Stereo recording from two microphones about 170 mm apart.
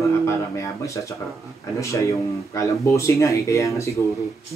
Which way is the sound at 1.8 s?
15° left (ahead or behind).